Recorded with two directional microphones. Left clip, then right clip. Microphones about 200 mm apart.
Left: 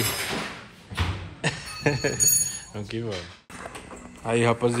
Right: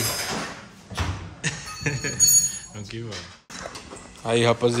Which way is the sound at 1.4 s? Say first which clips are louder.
Left 1 dB; centre (ahead or behind).